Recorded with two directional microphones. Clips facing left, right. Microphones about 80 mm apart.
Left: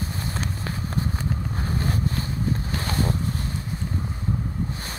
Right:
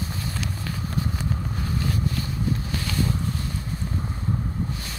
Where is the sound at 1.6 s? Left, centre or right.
Left.